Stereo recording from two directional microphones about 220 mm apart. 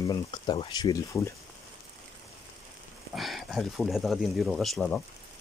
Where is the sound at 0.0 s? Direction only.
20° left (ahead or behind).